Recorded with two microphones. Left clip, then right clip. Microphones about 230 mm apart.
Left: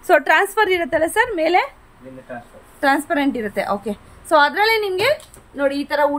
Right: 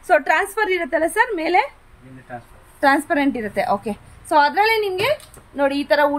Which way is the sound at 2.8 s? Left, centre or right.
Centre.